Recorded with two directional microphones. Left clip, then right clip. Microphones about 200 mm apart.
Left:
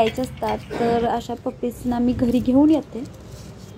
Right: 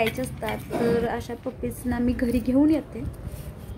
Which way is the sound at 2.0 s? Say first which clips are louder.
Left 4 dB; 10° right (ahead or behind).